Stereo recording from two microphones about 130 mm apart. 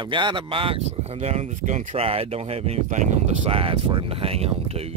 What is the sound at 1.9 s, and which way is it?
Speech, 50° right (ahead or behind).